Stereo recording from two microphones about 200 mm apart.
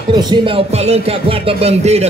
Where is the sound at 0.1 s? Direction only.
25° right (ahead or behind).